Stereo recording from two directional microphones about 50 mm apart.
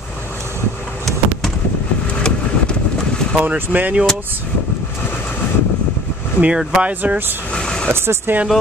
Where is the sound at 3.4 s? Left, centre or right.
Right.